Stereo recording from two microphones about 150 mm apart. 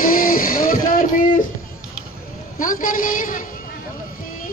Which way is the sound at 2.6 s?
60° left (ahead or behind).